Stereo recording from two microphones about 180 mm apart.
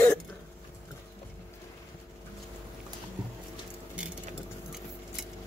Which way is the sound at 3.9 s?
5° right (ahead or behind).